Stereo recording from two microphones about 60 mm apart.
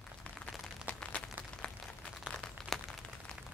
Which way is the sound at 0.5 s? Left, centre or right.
Centre.